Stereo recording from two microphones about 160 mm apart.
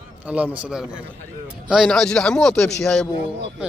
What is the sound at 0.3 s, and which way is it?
A man's voice, 10° right (ahead or behind).